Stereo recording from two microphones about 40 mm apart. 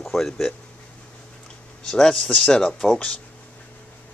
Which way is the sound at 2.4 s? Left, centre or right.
Centre.